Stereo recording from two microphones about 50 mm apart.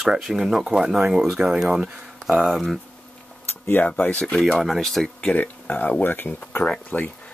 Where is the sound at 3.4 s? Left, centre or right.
Left.